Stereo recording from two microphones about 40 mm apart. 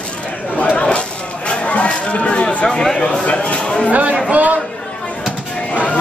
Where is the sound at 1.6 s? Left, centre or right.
Left.